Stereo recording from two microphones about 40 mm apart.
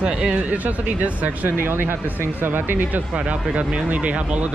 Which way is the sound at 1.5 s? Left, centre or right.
Right.